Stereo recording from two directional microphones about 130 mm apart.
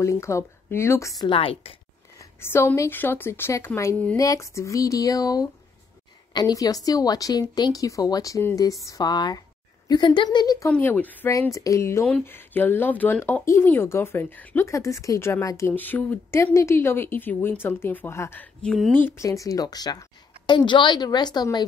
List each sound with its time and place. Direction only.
0.0 s a woman's voice: 20° left (ahead or behind)
1.2 s a woman's voice: 45° left (ahead or behind)
2.1 s a woman's voice: 20° left (ahead or behind)
3.9 s speech: 10° left (ahead or behind)
4.2 s a woman's voice: 25° left (ahead or behind)
10.7 s speech: 15° left (ahead or behind)
11.3 s a woman's voice: 25° left (ahead or behind)
14.7 s a woman's voice: 25° left (ahead or behind)